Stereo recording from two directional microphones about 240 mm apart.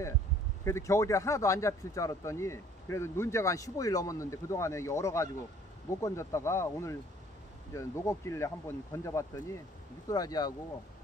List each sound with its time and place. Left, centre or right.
0.7 s speech: centre